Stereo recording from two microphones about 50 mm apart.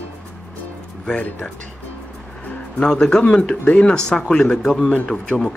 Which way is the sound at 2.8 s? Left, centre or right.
Centre.